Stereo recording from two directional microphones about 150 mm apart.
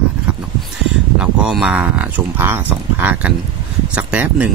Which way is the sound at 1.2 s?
5° right (ahead or behind).